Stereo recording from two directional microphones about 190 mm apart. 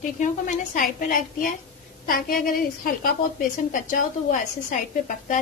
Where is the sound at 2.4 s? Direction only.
50° left (ahead or behind).